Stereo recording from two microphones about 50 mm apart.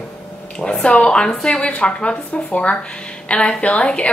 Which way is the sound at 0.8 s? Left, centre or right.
Left.